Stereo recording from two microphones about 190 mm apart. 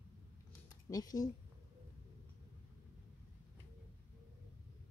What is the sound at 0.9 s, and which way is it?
Speech, 20° left (ahead or behind).